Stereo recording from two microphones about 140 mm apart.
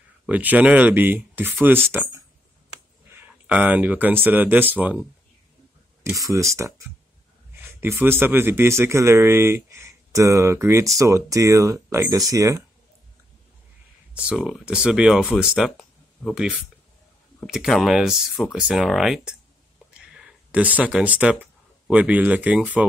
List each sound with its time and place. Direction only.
0.3 s speech: 10° right (ahead or behind)
6.1 s speech: 20° right (ahead or behind)
14.1 s speech: 5° right (ahead or behind)